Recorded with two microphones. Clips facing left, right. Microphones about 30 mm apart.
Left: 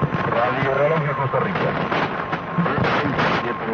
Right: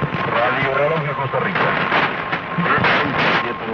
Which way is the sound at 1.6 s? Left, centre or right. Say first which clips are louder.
Right 4 dB; right.